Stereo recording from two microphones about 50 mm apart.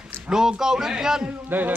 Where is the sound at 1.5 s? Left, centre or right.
Right.